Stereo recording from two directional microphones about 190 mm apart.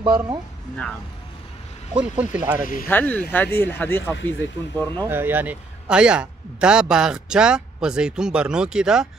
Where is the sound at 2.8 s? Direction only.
10° left (ahead or behind).